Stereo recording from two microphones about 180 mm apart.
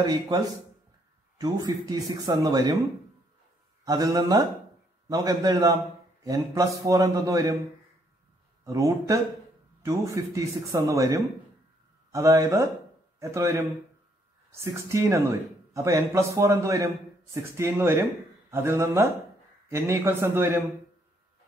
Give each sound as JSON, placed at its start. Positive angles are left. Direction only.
{"t": 0.0, "sound": "speech", "side_deg": -20}
{"t": 1.4, "sound": "speech", "side_deg": -20}
{"t": 3.8, "sound": "speech", "side_deg": -20}
{"t": 8.6, "sound": "a man's voice", "side_deg": -15}